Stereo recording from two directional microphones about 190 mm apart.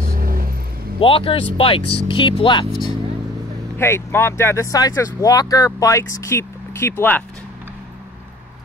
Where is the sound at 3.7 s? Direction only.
10° left (ahead or behind).